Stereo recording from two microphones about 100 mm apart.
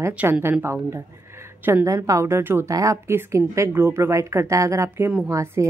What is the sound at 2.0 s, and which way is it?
Speech, 30° right (ahead or behind).